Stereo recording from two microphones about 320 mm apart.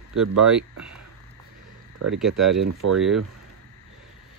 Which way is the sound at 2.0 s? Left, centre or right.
Right.